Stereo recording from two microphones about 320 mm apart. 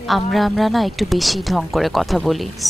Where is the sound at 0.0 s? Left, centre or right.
Centre.